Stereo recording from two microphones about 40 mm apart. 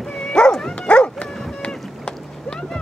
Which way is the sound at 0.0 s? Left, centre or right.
Centre.